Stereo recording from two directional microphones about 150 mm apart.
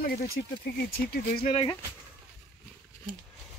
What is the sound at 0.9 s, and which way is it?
Speech, 80° left.